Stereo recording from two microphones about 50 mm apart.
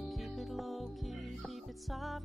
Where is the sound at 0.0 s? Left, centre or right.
Centre.